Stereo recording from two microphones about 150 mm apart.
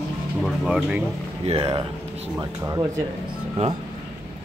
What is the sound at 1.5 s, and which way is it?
Speech, 40° right (ahead or behind).